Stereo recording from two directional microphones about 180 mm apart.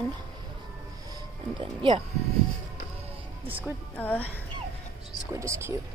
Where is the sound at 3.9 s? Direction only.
10° left (ahead or behind).